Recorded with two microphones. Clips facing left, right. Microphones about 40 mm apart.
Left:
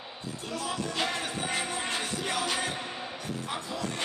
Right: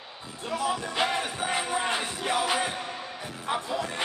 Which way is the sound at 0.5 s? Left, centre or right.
Centre.